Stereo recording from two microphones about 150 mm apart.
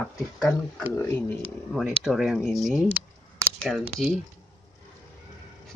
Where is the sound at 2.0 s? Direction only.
Centre (ahead or behind).